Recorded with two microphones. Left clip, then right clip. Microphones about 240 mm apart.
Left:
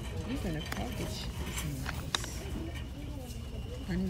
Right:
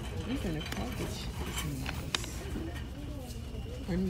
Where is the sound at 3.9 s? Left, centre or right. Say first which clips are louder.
Right 2 dB; centre.